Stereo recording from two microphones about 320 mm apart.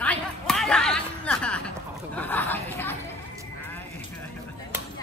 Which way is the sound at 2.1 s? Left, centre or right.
Centre.